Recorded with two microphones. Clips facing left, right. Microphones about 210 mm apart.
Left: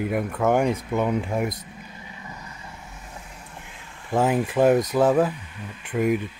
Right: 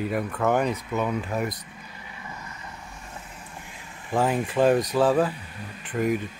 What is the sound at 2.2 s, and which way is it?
Vehicle, 15° left (ahead or behind).